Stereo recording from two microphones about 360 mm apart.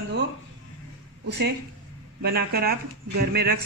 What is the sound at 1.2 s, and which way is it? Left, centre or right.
A woman's voice, right.